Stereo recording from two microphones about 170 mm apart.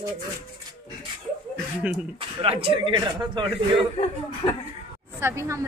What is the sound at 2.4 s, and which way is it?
A man's voice, 35° right (ahead or behind).